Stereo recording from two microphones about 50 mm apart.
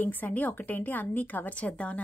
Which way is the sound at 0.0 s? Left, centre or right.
Left.